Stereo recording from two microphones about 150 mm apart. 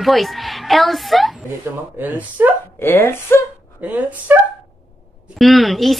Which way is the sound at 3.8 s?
10° right (ahead or behind).